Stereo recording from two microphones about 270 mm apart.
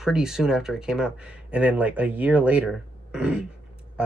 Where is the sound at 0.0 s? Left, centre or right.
Centre.